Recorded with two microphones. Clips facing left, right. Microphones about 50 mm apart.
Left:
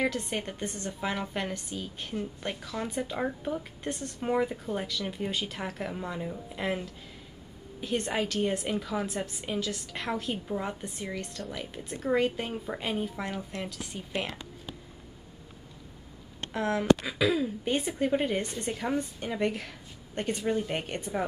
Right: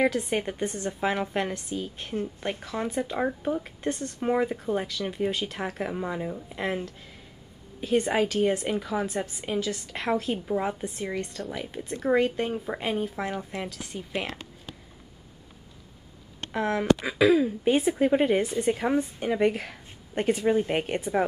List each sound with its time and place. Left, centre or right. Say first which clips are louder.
0.0 s a woman's voice: right 5 dB; centre
2.6 s speech: right 4 dB; centre
2.9 s speech: right 4 dB; centre
6.5 s speech: right 1 dB; centre
16.5 s a woman's voice: right 1 dB; centre
18.1 s a woman's voice: right 5 dB; centre
18.4 s speech: right 8 dB; centre
18.7 s a woman's voice: right 4 dB; centre